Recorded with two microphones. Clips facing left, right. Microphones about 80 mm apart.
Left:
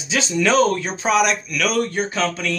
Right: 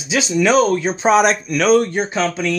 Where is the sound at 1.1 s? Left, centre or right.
Right; by 2.6 s centre.